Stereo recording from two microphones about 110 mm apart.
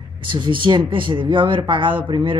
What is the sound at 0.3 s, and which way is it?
A woman's voice, 50° right (ahead or behind).